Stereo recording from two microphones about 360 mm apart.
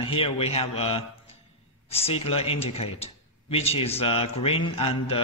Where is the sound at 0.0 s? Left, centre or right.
Centre.